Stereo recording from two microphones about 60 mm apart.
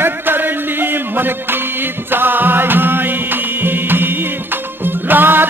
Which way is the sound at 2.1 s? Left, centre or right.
Right.